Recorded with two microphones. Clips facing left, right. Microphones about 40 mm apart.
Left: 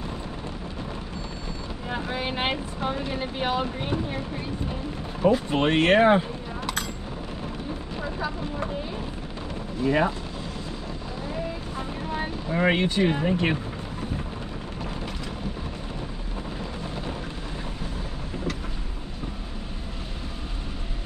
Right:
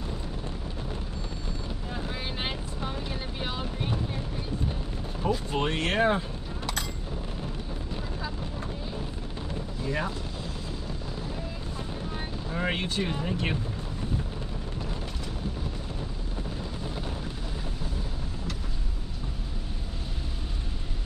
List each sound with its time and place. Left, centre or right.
1.9 s vehicle: left
5.2 s speech: left
9.8 s speech: left
12.4 s speech: left